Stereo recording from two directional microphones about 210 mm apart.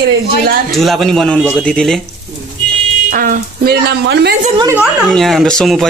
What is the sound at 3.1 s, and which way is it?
A woman's voice, 40° right (ahead or behind).